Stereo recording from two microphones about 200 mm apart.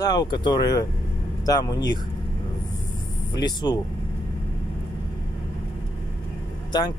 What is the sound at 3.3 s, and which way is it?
Speech, 20° left (ahead or behind).